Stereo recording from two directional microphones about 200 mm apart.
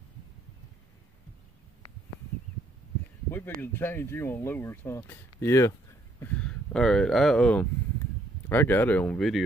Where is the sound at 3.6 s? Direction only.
10° left (ahead or behind).